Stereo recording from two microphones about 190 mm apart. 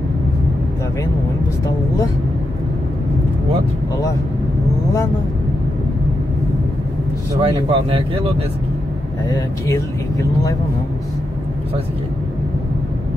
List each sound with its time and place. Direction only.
7.3 s speech: 30° right (ahead or behind)
9.3 s speech: 15° left (ahead or behind)